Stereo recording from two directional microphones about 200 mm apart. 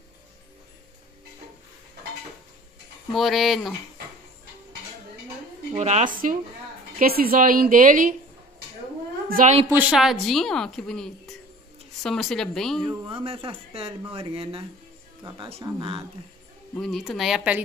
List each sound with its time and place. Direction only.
3.1 s a woman's voice: centre (ahead or behind)
5.8 s a woman's voice: 35° right (ahead or behind)
9.3 s speech: 40° right (ahead or behind)
9.7 s a woman's voice: 5° right (ahead or behind)
12.8 s speech: 30° right (ahead or behind)
16.7 s a woman's voice: centre (ahead or behind)